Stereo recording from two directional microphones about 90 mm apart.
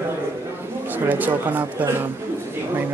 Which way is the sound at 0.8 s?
20° right (ahead or behind).